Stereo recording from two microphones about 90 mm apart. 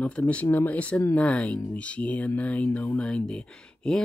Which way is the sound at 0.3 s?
15° left (ahead or behind).